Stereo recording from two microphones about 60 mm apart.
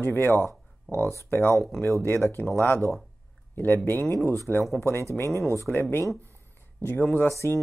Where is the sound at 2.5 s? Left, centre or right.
Left.